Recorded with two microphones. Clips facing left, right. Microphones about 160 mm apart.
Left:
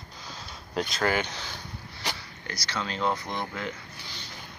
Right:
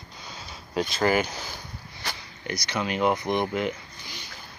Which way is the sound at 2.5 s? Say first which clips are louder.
Right 5 dB; 15° right (ahead or behind).